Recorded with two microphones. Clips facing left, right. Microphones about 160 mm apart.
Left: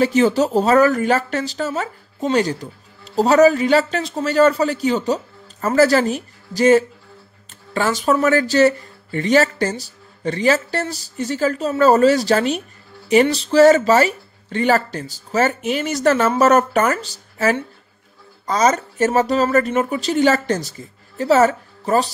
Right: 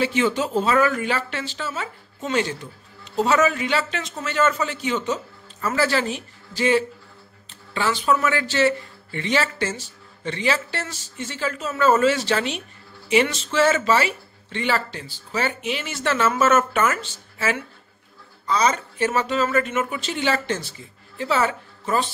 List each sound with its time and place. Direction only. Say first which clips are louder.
0.0 s a woman's voice: left 6 dB; 40° left (ahead or behind)